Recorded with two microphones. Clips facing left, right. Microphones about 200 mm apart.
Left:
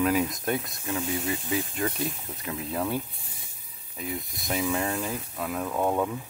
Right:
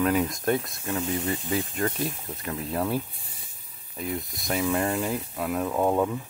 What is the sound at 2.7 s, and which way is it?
Speech, centre (ahead or behind).